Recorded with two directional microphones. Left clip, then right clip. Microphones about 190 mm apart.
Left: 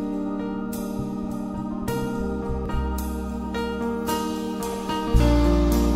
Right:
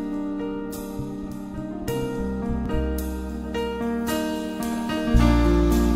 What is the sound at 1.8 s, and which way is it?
Music, centre (ahead or behind).